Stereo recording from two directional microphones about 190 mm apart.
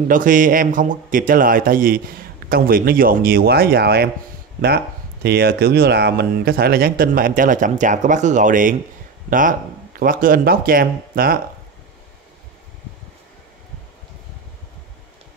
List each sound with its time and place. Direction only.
0.1 s speech: 45° right (ahead or behind)